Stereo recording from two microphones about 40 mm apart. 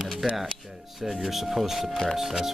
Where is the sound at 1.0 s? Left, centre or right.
Centre.